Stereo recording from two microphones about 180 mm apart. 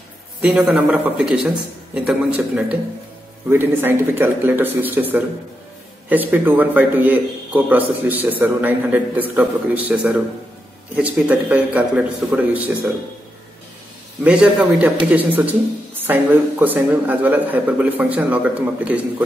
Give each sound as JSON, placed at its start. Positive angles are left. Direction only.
{"t": 0.4, "sound": "a man's voice", "side_deg": -5}
{"t": 14.2, "sound": "a man's voice", "side_deg": -5}